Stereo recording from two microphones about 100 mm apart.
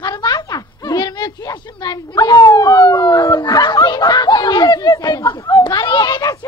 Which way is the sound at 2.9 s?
45° left (ahead or behind).